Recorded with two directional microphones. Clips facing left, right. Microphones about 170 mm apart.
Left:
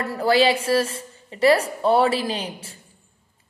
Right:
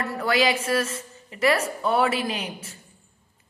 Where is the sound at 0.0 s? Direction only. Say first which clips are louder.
Left 4 dB; 30° left (ahead or behind).